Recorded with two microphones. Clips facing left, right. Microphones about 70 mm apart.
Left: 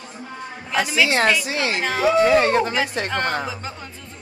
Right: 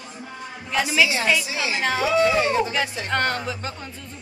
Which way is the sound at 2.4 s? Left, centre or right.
Left.